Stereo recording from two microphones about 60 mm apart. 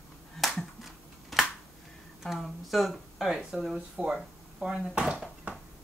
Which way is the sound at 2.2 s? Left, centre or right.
Centre.